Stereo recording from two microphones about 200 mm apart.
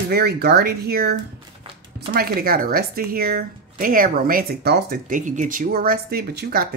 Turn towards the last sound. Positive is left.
turn(degrees=-50)  # may be behind; listen again after turning